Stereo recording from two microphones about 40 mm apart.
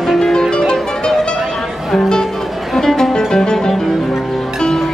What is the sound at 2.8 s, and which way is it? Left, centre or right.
Music, centre.